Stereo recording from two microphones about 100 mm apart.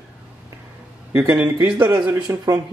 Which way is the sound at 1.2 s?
20° right (ahead or behind).